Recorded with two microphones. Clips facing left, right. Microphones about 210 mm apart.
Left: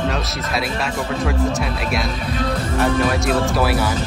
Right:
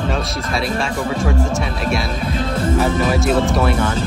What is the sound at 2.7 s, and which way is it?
Speech, centre (ahead or behind).